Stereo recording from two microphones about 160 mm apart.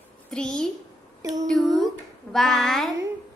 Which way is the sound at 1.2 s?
20° right (ahead or behind).